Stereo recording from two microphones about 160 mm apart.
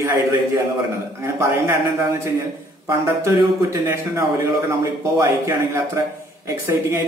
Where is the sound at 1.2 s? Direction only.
15° right (ahead or behind).